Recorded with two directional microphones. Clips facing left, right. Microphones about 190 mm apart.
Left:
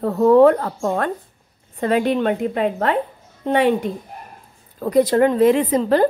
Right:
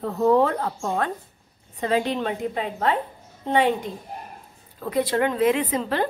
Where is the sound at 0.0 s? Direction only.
60° left (ahead or behind).